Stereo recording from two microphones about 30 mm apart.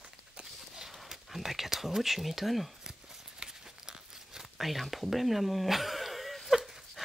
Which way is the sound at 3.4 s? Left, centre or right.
Right.